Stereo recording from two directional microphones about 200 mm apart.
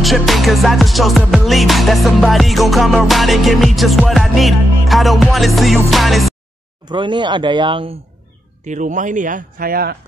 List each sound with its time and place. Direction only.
0.0 s music: centre (ahead or behind)
6.9 s speech: 25° right (ahead or behind)
8.6 s speech: 40° right (ahead or behind)